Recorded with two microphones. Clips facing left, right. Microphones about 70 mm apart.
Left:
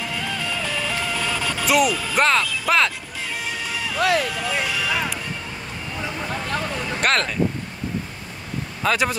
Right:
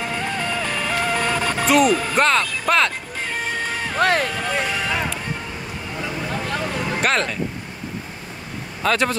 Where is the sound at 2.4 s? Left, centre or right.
Right.